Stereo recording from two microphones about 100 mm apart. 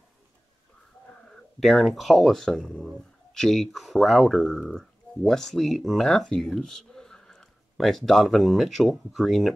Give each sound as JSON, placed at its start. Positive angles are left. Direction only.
{"t": 1.6, "sound": "speech", "side_deg": 0}